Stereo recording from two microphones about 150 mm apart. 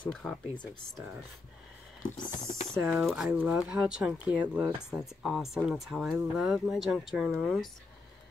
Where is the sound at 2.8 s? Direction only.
Centre (ahead or behind).